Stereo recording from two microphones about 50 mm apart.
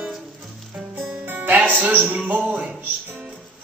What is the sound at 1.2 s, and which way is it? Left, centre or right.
Music, right.